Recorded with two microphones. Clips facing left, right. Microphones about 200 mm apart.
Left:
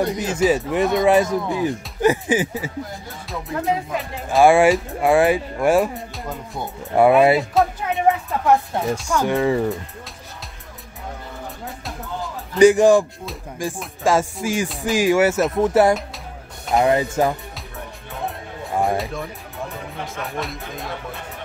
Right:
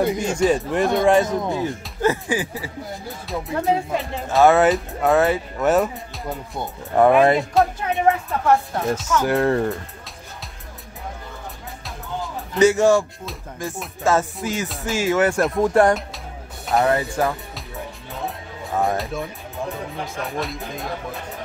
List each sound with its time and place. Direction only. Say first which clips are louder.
0.0 s speech: even; centre (ahead or behind)
2.0 s speech: left 3 dB; 20° left (ahead or behind)
3.3 s speech: right 2 dB; centre (ahead or behind)
4.4 s speech: left 1 dB; 10° left (ahead or behind)
5.9 s speech: even; centre (ahead or behind)
8.3 s speech: left 1 dB; 15° left (ahead or behind)
9.2 s speech: left 1 dB; centre (ahead or behind)
12.5 s speech: left 3 dB; 15° left (ahead or behind)
14.0 s speech: left 1 dB; 10° left (ahead or behind)
16.7 s speech: left 2 dB; 15° left (ahead or behind)
18.7 s speech: left 1 dB; centre (ahead or behind)